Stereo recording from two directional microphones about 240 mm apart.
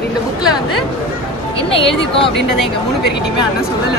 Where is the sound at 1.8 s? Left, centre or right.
Left.